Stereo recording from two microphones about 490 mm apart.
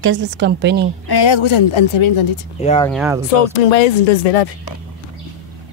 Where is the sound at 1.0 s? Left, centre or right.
Left.